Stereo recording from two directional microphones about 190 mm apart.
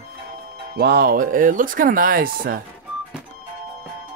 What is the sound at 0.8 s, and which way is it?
Speech, 60° right (ahead or behind).